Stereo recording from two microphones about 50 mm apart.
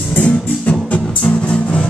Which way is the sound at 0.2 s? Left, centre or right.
Left.